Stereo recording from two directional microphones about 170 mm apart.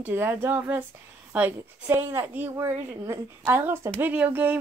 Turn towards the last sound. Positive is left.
turn(degrees=-10)  # may be behind; listen again after turning